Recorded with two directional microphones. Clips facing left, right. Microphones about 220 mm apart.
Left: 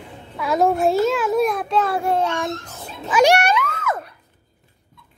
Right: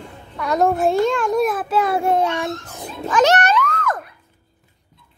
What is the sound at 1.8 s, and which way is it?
Speech, 20° right (ahead or behind).